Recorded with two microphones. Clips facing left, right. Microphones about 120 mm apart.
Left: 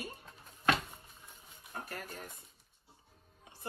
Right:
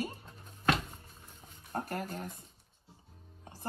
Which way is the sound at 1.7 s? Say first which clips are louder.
Right 7 dB; 45° right (ahead or behind).